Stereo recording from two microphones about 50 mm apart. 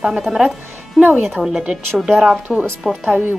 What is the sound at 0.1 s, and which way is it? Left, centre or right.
Speech, centre.